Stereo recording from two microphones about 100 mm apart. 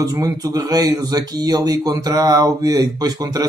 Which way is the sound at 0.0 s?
40° right (ahead or behind).